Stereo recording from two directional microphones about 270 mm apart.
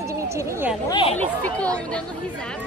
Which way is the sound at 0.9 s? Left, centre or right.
Centre.